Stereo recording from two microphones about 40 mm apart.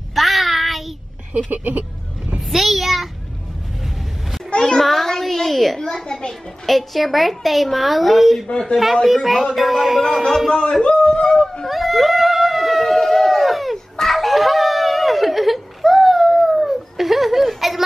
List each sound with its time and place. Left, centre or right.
0.1 s child singing: centre
1.5 s speech: right
2.5 s a woman's voice: centre
4.5 s a sound: left
4.7 s a child's voice: centre
5.8 s a child's voice: centre
6.6 s a woman's voice: centre
8.5 s speech: left
9.0 s a woman's voice: centre
10.8 s speech: left
11.6 s a sound: centre
12.8 s a sound: centre